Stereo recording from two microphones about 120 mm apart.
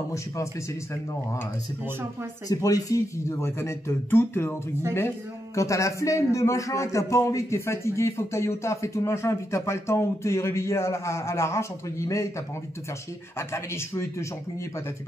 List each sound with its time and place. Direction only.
2.4 s a man's voice: 30° left (ahead or behind)
13.4 s a man's voice: 20° left (ahead or behind)